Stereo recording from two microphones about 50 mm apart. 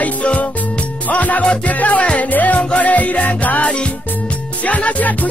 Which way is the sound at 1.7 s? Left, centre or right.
Left.